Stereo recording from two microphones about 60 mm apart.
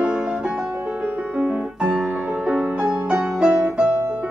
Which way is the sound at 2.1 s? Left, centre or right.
Right.